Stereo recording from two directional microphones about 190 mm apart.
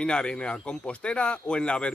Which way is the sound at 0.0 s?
5° left (ahead or behind).